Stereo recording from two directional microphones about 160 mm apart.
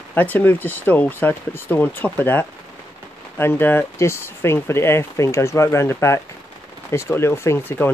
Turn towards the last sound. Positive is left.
turn(degrees=15)  # may be behind; listen again after turning